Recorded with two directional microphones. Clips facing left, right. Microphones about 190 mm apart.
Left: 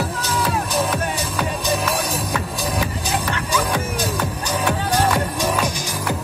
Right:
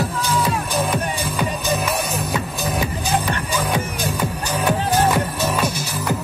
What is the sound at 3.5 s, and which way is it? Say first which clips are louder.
Music: left 2 dB; 10° right (ahead or behind).